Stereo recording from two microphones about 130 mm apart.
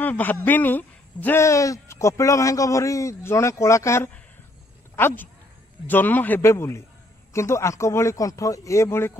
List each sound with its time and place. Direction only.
0.0 s a man's voice: 15° left (ahead or behind)